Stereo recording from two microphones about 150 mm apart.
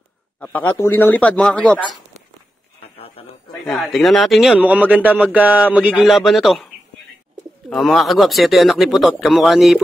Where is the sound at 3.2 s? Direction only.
40° left (ahead or behind).